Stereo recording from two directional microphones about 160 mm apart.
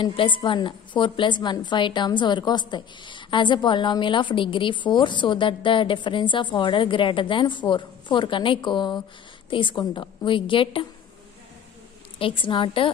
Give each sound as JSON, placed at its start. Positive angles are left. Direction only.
{"t": 0.0, "sound": "a woman's voice", "side_deg": 30}
{"t": 12.2, "sound": "a woman's voice", "side_deg": 35}